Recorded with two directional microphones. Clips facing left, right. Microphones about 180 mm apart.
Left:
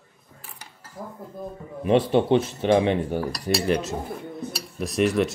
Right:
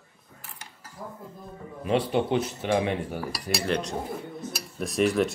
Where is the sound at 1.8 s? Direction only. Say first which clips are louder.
Left 5 dB; 25° left (ahead or behind).